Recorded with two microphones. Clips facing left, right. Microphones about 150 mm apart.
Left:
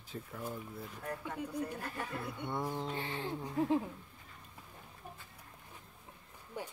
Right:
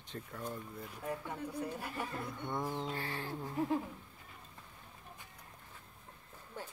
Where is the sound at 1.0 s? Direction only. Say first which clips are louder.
Right 2 dB; 10° right (ahead or behind).